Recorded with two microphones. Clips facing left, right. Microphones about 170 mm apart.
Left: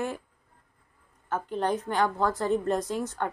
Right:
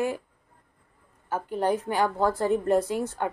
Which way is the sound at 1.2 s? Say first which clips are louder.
Right 2 dB; 10° right (ahead or behind).